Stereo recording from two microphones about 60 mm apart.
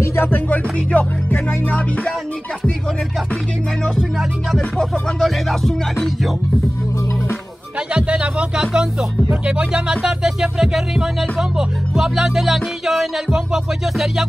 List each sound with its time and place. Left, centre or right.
0.0 s music: left
0.5 s music: left
4.2 s music: centre
7.9 s music: centre